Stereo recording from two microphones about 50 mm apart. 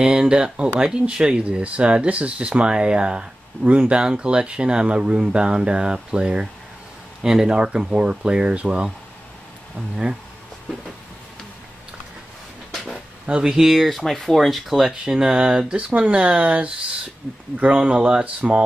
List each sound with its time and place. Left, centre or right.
0.0 s speech: centre
12.7 s a sound: centre
13.3 s speech: centre